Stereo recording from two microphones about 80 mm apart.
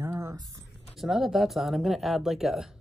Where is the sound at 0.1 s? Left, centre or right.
Right.